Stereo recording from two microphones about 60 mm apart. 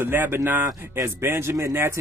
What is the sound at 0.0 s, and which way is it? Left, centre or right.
Speech, right.